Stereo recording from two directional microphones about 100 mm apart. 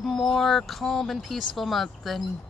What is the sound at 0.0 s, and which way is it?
Speech, centre (ahead or behind).